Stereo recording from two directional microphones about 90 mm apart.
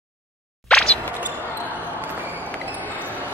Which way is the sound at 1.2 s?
20° right (ahead or behind).